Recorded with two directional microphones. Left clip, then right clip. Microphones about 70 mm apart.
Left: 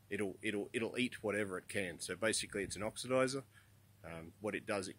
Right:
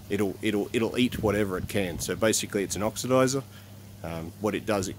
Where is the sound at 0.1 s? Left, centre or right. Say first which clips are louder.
Right 12 dB; centre.